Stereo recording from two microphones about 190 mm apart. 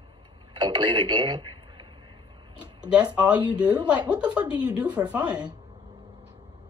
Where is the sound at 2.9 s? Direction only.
5° right (ahead or behind).